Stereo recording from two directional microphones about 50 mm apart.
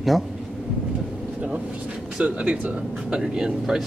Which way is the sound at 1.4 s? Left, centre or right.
Right.